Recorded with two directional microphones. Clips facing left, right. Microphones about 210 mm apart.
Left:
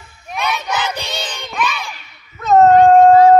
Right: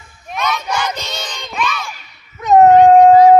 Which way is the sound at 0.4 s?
10° left (ahead or behind).